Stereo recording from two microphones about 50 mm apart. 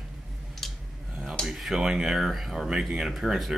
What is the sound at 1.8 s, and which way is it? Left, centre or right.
Speech, centre.